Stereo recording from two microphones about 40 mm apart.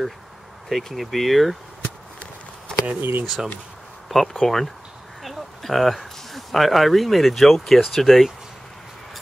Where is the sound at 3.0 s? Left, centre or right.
Right.